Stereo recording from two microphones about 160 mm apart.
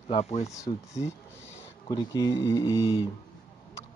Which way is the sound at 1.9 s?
25° left (ahead or behind).